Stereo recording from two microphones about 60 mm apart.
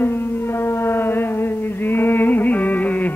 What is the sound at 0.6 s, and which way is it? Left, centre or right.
Mantra, left.